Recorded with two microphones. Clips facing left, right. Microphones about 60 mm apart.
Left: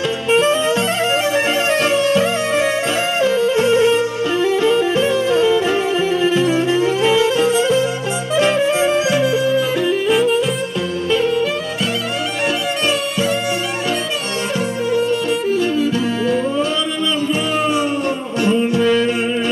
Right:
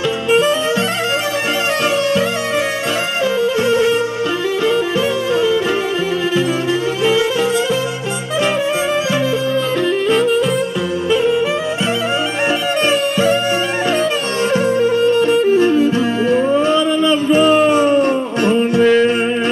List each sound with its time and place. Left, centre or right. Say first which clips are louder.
3.4 s music: even; left
9.8 s music: right 2 dB; centre
11.1 s music: right 2 dB; centre
14.8 s music: right 2 dB; right